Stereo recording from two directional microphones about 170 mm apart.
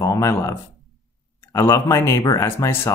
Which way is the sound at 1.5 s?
15° left (ahead or behind).